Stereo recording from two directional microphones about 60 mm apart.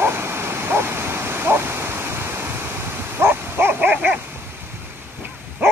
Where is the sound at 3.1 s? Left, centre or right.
Right.